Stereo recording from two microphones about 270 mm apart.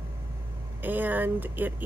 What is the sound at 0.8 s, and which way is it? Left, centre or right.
Speech, centre.